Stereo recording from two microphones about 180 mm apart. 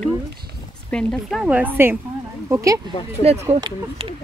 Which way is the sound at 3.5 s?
30° right (ahead or behind).